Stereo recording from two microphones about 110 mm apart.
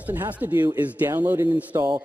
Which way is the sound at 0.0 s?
15° right (ahead or behind).